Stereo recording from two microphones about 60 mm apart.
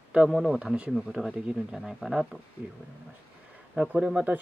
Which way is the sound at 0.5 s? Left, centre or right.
Centre.